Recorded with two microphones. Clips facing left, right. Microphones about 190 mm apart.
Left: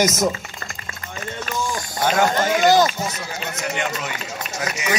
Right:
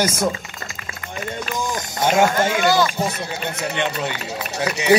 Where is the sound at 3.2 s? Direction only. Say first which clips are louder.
Right 3 dB; 30° right (ahead or behind).